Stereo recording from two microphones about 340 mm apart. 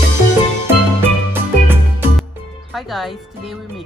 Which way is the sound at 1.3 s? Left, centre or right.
Centre.